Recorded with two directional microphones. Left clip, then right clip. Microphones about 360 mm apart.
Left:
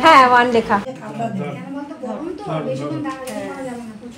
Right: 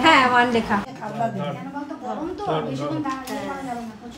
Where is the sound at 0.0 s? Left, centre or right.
Centre.